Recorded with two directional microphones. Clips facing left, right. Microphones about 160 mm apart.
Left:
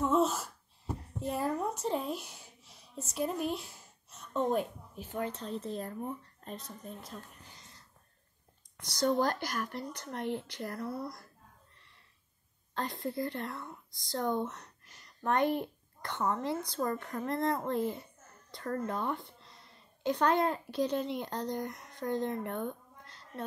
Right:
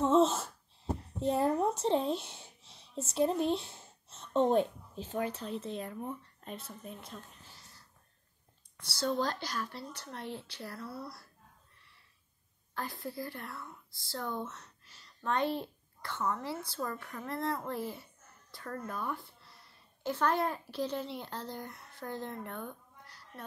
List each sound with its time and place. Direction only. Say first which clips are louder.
0.0 s speech: right 2 dB; 25° right (ahead or behind)
5.5 s speech: left 1 dB; centre (ahead or behind)
8.7 s speech: left 4 dB; 15° left (ahead or behind)
12.7 s a child's voice: left 4 dB; 20° left (ahead or behind)
22.5 s a sound: left 6 dB; 20° left (ahead or behind)